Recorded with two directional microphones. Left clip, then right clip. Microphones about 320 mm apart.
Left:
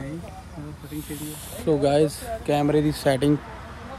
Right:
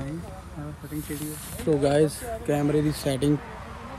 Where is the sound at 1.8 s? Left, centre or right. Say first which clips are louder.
Left 2 dB; centre.